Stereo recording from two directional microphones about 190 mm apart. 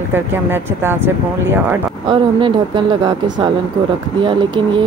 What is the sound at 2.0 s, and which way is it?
Speech, 25° right (ahead or behind).